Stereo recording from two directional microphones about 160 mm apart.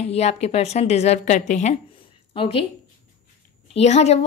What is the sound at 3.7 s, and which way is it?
Speech, 45° left (ahead or behind).